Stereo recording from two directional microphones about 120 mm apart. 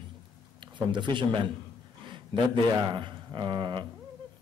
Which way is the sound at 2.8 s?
40° right (ahead or behind).